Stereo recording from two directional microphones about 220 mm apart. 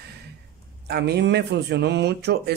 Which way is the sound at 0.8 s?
50° right (ahead or behind).